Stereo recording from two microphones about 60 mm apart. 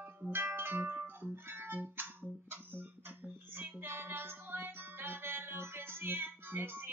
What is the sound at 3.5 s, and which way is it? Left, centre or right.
Music, right.